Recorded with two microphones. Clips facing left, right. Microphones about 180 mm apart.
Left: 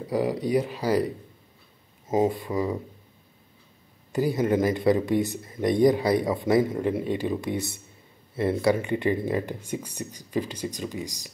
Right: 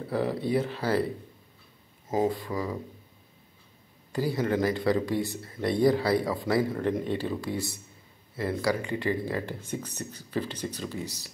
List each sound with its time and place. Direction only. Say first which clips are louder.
0.0 s speech: left 3 dB; 15° left (ahead or behind)
2.0 s speech: left 3 dB; 20° left (ahead or behind)
4.1 s speech: left 4 dB; 20° left (ahead or behind)
6.8 s speech: left 2 dB; 10° left (ahead or behind)